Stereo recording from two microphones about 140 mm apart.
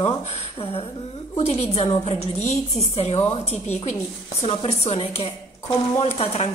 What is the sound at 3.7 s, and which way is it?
A woman's voice, 50° left (ahead or behind).